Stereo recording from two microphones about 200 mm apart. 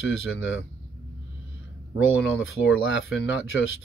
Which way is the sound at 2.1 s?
70° left (ahead or behind).